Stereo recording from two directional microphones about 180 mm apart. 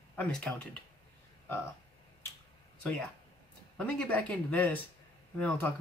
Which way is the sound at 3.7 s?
5° left (ahead or behind).